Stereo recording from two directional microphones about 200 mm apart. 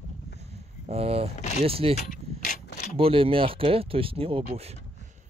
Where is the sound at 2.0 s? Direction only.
40° left (ahead or behind).